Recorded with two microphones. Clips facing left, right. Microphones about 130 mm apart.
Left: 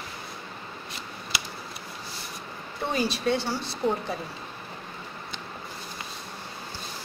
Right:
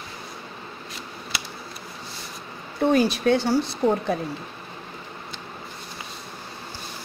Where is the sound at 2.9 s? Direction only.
50° right (ahead or behind).